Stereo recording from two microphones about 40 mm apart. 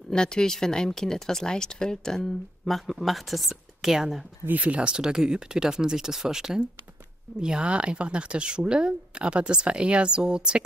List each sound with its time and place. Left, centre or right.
0.1 s speech: centre
4.5 s speech: right
4.9 s speech: centre